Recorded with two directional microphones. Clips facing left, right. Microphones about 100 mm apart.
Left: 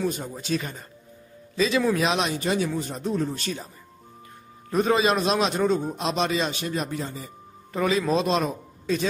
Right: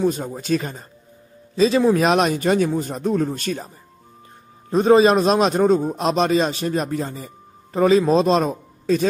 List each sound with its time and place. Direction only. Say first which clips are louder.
0.0 s a man's voice: right 7 dB; 40° right (ahead or behind)
4.6 s a man's voice: right 8 dB; 30° right (ahead or behind)